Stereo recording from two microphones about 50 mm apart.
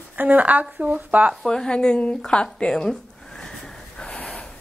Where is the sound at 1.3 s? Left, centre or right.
Centre.